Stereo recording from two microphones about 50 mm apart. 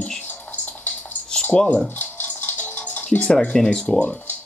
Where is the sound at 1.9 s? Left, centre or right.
Left.